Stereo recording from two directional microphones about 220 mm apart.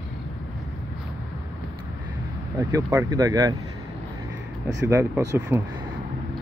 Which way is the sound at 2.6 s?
15° right (ahead or behind).